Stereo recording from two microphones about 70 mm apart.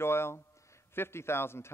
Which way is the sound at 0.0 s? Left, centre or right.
Left.